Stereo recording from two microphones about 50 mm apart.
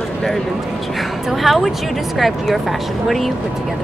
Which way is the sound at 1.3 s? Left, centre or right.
Centre.